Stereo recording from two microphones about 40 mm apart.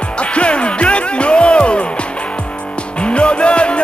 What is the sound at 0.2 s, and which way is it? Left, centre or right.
Music, left.